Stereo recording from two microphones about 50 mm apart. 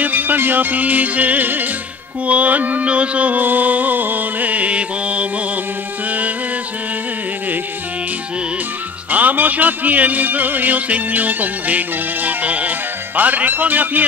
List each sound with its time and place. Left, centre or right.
0.0 s music: right
2.2 s mantra: right
6.0 s music: right
9.1 s music: right